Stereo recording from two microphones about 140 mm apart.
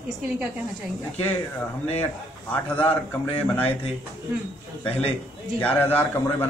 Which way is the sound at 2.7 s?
10° left (ahead or behind).